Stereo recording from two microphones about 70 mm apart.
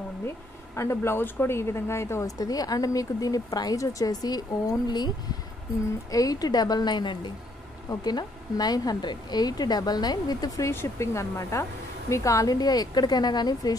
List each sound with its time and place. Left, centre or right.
0.7 s speech: left
2.2 s speech: left
4.8 s speech: left
6.1 s speech: left
7.9 s speech: left
10.7 s speech: left